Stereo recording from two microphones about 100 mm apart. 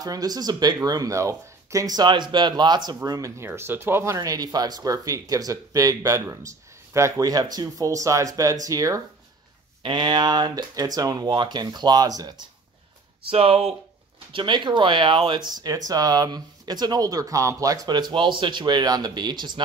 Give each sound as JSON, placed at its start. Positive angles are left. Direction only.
{"t": 0.0, "sound": "speech", "side_deg": -40}
{"t": 3.1, "sound": "speech", "side_deg": -35}
{"t": 9.8, "sound": "speech", "side_deg": -50}
{"t": 13.3, "sound": "speech", "side_deg": -75}
{"t": 14.3, "sound": "speech", "side_deg": -50}